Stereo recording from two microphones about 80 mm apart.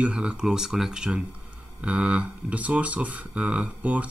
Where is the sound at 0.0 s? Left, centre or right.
Centre.